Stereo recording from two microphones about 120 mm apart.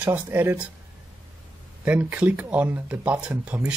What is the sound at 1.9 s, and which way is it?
Speech, 15° right (ahead or behind).